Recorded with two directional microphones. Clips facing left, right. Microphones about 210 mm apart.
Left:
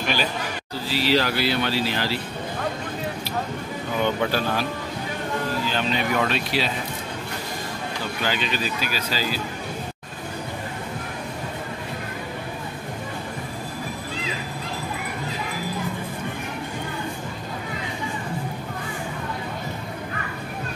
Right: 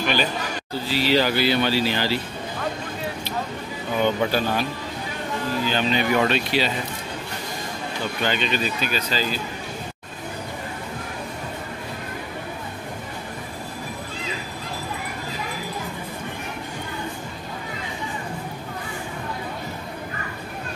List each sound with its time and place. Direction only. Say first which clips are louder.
0.8 s speech: right 1 dB; centre (ahead or behind)
4.2 s speech: right 1 dB; centre (ahead or behind)
5.7 s speech: right 5 dB; centre (ahead or behind)
8.2 s speech: right 2 dB; 5° left (ahead or behind)